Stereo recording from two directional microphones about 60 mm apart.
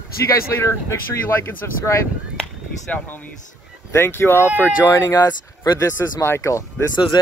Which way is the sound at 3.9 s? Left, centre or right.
Left.